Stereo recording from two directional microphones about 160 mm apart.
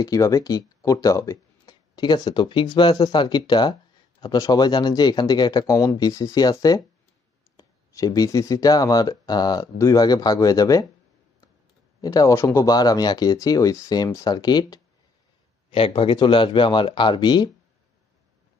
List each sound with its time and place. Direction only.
0.0 s speech: 20° left (ahead or behind)
12.0 s speech: 25° left (ahead or behind)